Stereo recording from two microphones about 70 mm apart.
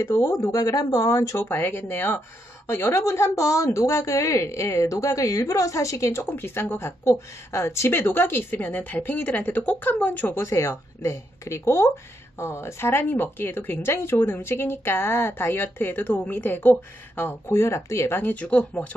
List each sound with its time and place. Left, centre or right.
0.2 s a woman's voice: left
6.3 s a woman's voice: left
10.3 s speech: left
17.5 s speech: left
18.3 s a woman's voice: centre